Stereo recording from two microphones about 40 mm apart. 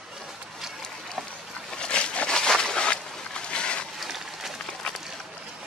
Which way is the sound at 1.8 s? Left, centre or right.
Left.